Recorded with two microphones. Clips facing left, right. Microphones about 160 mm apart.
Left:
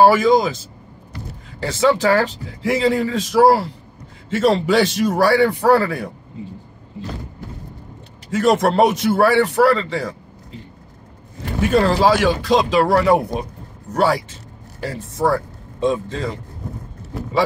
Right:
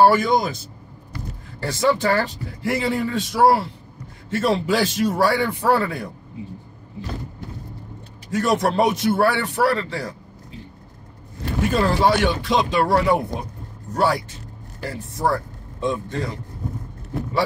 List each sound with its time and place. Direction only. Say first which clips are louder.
0.0 s speech: left 3 dB; 90° left
1.6 s a man's voice: left 3 dB; 75° left (ahead or behind)
8.3 s a man's voice: left 4 dB; 75° left (ahead or behind)
11.6 s a man's voice: left 4 dB; 75° left (ahead or behind)